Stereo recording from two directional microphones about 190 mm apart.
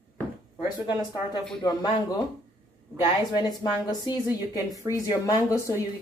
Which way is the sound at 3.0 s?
20° left (ahead or behind).